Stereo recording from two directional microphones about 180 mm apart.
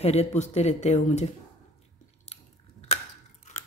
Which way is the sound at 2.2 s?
35° left (ahead or behind).